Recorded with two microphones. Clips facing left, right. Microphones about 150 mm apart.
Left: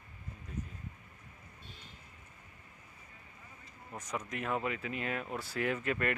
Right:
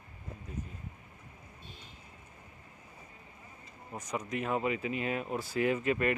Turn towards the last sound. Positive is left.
turn(degrees=-10)  # may be behind; listen again after turning